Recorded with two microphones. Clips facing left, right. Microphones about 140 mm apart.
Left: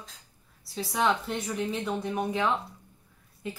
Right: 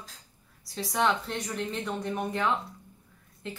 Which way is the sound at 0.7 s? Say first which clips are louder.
Even; centre (ahead or behind).